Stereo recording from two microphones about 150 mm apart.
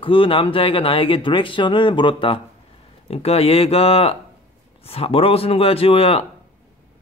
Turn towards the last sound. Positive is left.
turn(degrees=40)  # may be behind; listen again after turning